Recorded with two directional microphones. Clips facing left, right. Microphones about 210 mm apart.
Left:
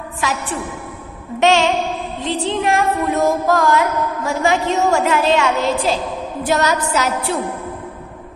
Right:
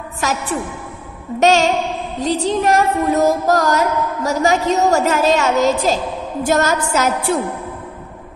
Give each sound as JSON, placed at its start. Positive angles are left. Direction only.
{"t": 0.2, "sound": "music", "side_deg": -40}
{"t": 6.4, "sound": "a woman's voice", "side_deg": -45}